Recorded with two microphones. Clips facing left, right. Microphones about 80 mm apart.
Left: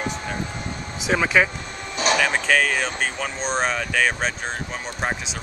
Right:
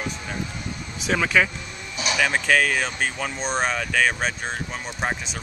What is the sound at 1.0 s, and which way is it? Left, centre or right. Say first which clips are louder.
Speech: left 2 dB; centre.